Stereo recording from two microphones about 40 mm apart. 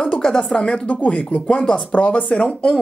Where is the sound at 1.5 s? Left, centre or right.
Left.